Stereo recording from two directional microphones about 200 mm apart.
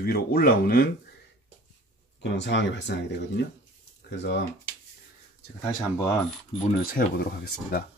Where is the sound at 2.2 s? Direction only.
65° left (ahead or behind).